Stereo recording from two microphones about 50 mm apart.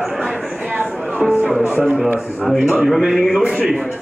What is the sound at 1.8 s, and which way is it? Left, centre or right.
A man's voice, centre.